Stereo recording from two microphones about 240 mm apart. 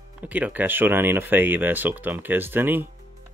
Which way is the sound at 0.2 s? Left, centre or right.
Centre.